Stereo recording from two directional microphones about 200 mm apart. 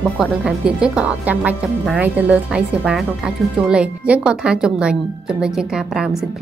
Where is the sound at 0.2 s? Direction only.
5° right (ahead or behind).